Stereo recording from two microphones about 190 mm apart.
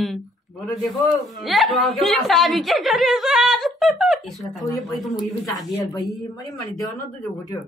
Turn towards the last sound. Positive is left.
turn(degrees=20)  # may be behind; listen again after turning